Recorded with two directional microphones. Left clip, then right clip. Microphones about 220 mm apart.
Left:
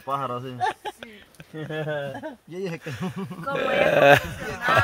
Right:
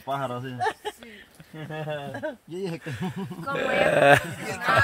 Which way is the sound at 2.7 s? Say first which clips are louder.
Left 1 dB; 5° left (ahead or behind).